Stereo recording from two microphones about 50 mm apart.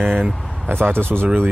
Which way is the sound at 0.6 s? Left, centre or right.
Right.